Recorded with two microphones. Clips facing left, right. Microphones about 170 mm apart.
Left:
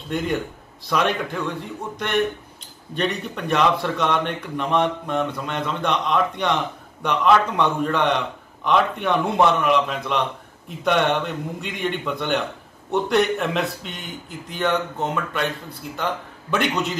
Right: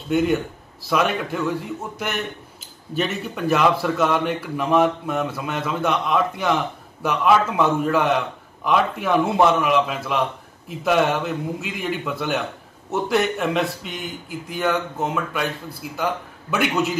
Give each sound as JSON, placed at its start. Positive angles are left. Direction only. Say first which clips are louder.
{"t": 0.1, "sound": "a man's voice", "louder": "right 5 dB", "side_deg": 0}
{"t": 2.6, "sound": "a man's voice", "louder": "even", "side_deg": -5}